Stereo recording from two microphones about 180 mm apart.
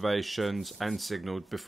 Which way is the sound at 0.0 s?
Centre (ahead or behind).